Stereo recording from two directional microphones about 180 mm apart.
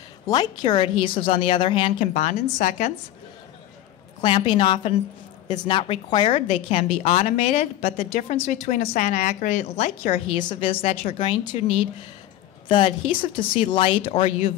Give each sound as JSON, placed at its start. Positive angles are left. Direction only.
{"t": 0.3, "sound": "speech", "side_deg": 25}
{"t": 1.9, "sound": "a woman's voice", "side_deg": 40}
{"t": 4.2, "sound": "a woman's voice", "side_deg": 25}
{"t": 10.6, "sound": "a woman's voice", "side_deg": 35}